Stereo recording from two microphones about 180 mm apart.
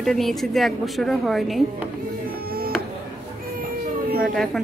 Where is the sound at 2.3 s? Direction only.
55° right (ahead or behind).